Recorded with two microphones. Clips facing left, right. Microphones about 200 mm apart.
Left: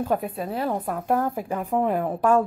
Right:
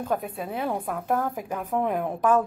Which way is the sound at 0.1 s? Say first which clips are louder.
Left 3 dB; centre (ahead or behind).